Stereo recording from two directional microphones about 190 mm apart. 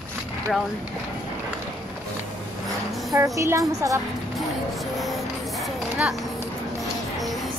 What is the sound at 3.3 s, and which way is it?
Speech, 15° right (ahead or behind).